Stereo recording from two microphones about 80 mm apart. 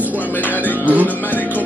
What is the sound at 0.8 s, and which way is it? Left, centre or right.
Speech, centre.